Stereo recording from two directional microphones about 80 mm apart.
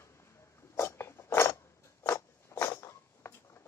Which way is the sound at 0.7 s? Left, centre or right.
Left.